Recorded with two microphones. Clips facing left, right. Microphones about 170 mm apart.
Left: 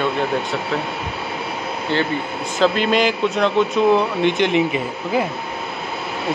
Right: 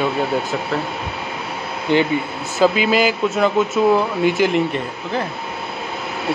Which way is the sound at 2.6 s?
5° right (ahead or behind).